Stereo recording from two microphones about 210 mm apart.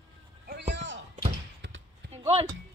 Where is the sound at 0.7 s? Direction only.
60° right (ahead or behind).